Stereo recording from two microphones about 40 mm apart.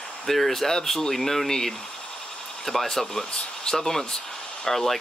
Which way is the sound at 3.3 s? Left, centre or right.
Centre.